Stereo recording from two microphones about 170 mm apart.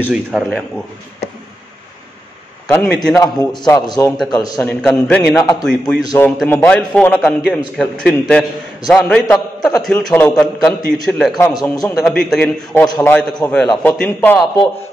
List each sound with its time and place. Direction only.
0.0 s a man's voice: 5° right (ahead or behind)
2.7 s a man's voice: 5° left (ahead or behind)
3.2 s a man's voice: 25° left (ahead or behind)
4.6 s a man's voice: 5° left (ahead or behind)
5.3 s a man's voice: 25° left (ahead or behind)
5.7 s a man's voice: centre (ahead or behind)
6.0 s a man's voice: 15° left (ahead or behind)
11.3 s a man's voice: 15° left (ahead or behind)
12.0 s a man's voice: centre (ahead or behind)
12.8 s a man's voice: 15° left (ahead or behind)